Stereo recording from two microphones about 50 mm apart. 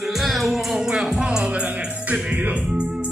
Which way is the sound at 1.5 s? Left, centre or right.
Right.